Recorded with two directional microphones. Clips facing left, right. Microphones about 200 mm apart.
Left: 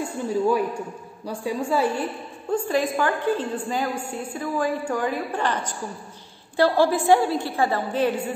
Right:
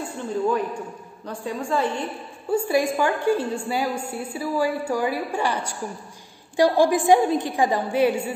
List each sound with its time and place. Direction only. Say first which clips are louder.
0.3 s a woman's voice: left 1 dB; 10° left (ahead or behind)
2.5 s a woman's voice: right 2 dB; 10° right (ahead or behind)